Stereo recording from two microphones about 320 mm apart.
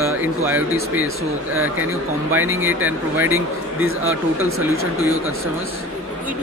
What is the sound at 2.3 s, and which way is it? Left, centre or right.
Speech, centre.